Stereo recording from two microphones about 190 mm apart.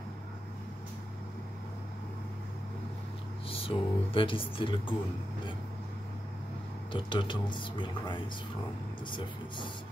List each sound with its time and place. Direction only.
3.4 s speech: 30° left (ahead or behind)
6.9 s speech: 25° left (ahead or behind)